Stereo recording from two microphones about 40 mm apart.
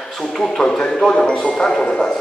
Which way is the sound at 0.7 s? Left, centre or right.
Centre.